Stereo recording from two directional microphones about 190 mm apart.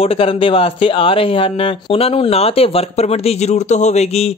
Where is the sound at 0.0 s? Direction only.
30° left (ahead or behind).